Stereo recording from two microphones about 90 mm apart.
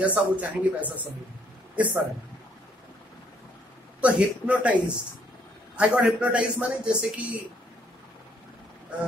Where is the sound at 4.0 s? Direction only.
15° right (ahead or behind).